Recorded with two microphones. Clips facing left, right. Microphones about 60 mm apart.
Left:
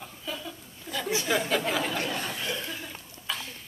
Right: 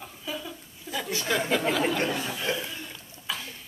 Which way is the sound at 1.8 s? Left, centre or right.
Right.